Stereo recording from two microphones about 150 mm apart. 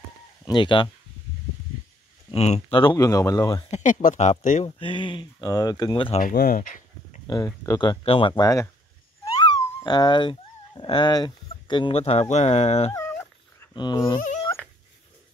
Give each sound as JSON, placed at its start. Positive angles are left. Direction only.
{"t": 0.5, "sound": "speech", "side_deg": 30}
{"t": 2.3, "sound": "speech", "side_deg": 45}
{"t": 2.7, "sound": "speech", "side_deg": 30}
{"t": 3.7, "sound": "speech", "side_deg": 60}
{"t": 4.6, "sound": "speech", "side_deg": 35}
{"t": 6.2, "sound": "speech", "side_deg": 75}
{"t": 7.2, "sound": "speech", "side_deg": 25}
{"t": 13.7, "sound": "speech", "side_deg": 30}